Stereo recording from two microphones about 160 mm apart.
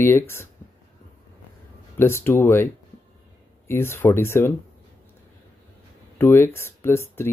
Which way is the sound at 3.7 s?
15° left (ahead or behind).